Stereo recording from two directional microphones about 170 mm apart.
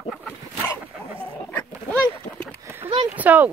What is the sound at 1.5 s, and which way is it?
Duck, 10° left (ahead or behind).